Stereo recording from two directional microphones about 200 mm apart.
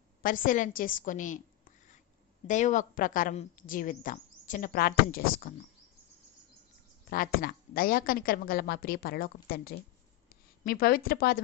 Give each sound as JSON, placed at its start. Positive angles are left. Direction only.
{"t": 0.2, "sound": "a woman's voice", "side_deg": 45}
{"t": 7.1, "sound": "a woman's voice", "side_deg": 50}